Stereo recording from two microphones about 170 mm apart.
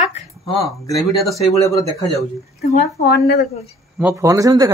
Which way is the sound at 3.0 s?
75° left (ahead or behind).